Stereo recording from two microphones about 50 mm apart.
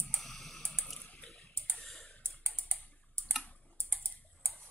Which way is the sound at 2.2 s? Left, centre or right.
Right.